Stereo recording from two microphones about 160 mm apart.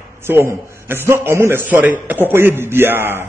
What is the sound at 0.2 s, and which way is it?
A man's voice, 15° right (ahead or behind).